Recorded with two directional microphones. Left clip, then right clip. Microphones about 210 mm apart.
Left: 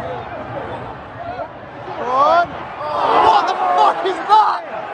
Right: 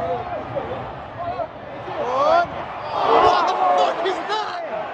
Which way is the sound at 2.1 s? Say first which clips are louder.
Left 4 dB; 20° right (ahead or behind).